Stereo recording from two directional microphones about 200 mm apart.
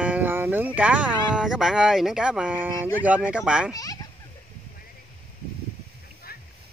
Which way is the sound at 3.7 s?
20° left (ahead or behind).